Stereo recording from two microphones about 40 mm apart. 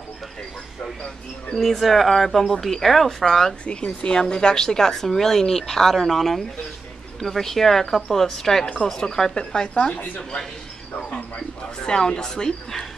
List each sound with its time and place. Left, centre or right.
1.6 s speech: centre
3.6 s a woman's voice: left
11.8 s speech: centre